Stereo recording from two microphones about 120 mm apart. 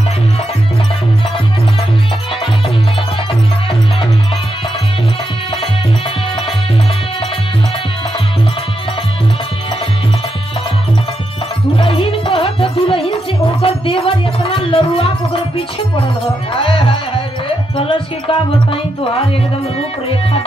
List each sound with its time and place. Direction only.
11.8 s music: 50° left (ahead or behind)
16.5 s music: 45° left (ahead or behind)